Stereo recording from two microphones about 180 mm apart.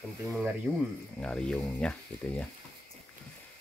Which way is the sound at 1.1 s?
5° left (ahead or behind).